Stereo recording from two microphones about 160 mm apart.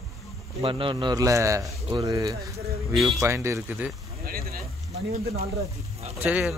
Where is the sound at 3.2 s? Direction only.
15° right (ahead or behind).